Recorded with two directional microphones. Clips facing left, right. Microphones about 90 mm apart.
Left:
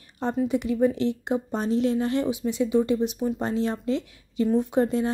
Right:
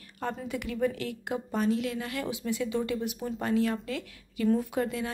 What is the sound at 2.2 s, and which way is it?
A woman's voice, 20° left (ahead or behind).